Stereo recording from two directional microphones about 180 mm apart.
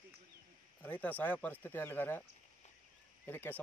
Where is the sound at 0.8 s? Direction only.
10° left (ahead or behind).